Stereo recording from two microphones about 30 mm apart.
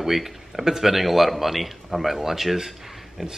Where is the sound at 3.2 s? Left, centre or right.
Right.